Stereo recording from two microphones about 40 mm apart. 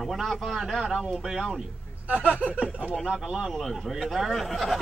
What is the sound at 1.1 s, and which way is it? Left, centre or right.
Speech, centre.